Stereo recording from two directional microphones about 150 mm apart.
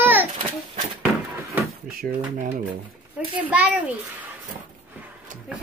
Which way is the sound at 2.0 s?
65° right (ahead or behind).